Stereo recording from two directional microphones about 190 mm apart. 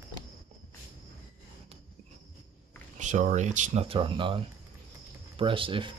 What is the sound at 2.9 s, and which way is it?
Speech, 40° right (ahead or behind).